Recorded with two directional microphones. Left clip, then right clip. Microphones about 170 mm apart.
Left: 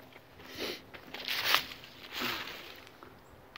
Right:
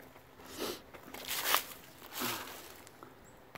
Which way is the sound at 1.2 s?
20° right (ahead or behind).